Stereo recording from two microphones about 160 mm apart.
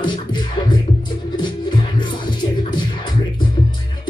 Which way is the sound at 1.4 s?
30° left (ahead or behind).